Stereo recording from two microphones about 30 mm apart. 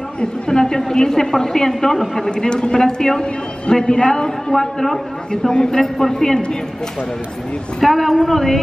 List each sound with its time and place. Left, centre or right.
0.5 s a man's voice: left
2.3 s a man's voice: left; by 5.0 s centre
5.5 s a man's voice: left
5.8 s a man's voice: centre
7.8 s a woman's voice: centre